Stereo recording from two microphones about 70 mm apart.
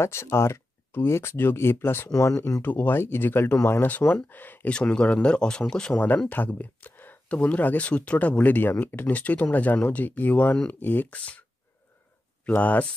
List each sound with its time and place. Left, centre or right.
0.0 s speech: left
2.0 s speech: left
2.6 s speech: left
4.7 s speech: centre
5.9 s speech: left
11.1 s speech: centre
12.4 s speech: left